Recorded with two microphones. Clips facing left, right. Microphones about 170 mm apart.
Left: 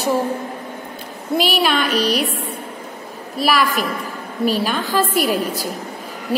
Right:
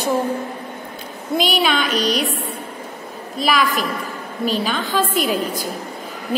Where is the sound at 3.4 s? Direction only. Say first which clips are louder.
Left 1 dB; 5° left (ahead or behind).